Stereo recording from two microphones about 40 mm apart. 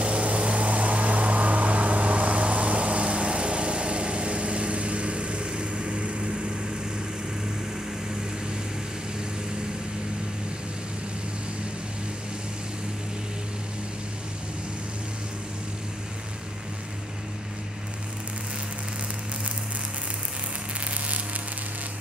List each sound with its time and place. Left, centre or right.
0.0 s vehicle: right